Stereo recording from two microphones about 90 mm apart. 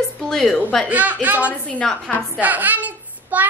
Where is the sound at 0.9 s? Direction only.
15° right (ahead or behind).